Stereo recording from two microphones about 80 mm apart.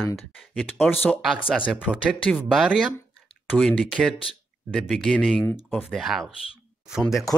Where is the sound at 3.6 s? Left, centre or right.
Centre.